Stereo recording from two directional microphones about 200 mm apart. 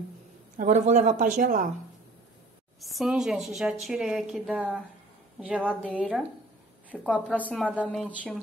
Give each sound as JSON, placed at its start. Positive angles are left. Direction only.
{"t": 0.6, "sound": "speech", "side_deg": -35}
{"t": 2.8, "sound": "a woman's voice", "side_deg": 0}
{"t": 5.8, "sound": "a woman's voice", "side_deg": 5}
{"t": 7.3, "sound": "a woman's voice", "side_deg": 5}